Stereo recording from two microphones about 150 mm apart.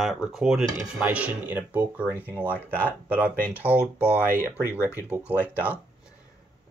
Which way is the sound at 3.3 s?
15° left (ahead or behind).